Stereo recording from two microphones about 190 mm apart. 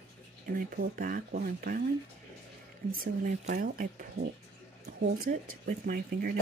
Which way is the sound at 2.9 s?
45° right (ahead or behind).